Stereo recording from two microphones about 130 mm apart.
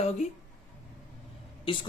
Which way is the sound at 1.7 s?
40° left (ahead or behind).